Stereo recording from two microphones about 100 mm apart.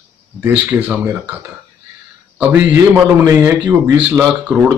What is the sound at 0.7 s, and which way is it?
Speech, 15° right (ahead or behind).